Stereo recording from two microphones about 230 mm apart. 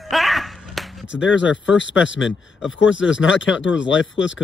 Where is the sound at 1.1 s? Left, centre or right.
Left.